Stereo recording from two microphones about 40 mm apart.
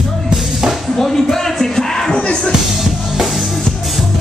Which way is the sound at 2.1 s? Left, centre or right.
Left.